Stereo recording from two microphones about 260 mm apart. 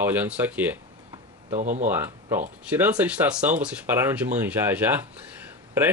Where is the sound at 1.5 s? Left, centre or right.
Right.